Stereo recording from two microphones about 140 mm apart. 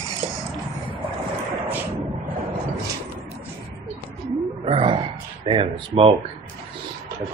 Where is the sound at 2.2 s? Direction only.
90° right.